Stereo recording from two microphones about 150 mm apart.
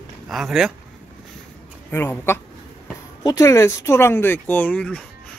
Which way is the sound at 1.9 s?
15° left (ahead or behind).